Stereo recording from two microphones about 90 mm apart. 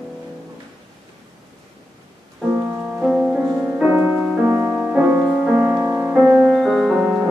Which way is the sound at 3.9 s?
25° right (ahead or behind).